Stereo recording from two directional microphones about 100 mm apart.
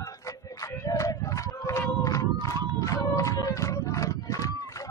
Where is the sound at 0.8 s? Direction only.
35° left (ahead or behind).